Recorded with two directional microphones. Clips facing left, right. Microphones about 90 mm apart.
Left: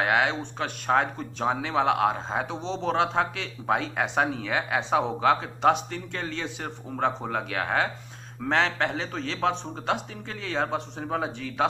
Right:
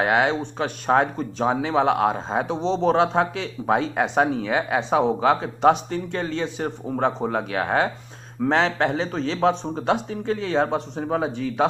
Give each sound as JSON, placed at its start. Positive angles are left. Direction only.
{"t": 0.0, "sound": "a man's voice", "side_deg": -10}